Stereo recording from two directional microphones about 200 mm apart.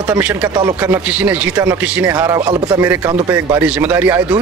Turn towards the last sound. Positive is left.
turn(degrees=-10)  # may be behind; listen again after turning